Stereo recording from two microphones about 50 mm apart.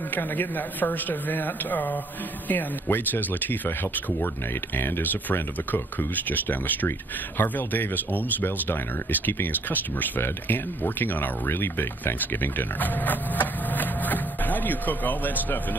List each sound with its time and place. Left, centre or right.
0.1 s speech: left
4.7 s speech: left